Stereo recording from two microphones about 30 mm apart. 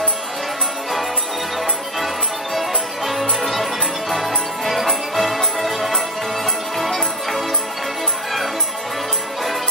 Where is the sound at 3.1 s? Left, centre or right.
Centre.